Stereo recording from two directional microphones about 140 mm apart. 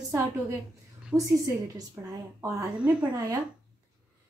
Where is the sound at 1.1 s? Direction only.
25° right (ahead or behind).